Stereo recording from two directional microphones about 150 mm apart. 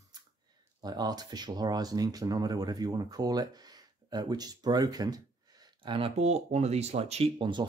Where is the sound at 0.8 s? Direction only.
25° right (ahead or behind).